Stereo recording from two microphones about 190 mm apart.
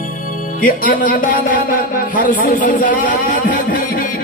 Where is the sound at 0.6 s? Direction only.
45° left (ahead or behind).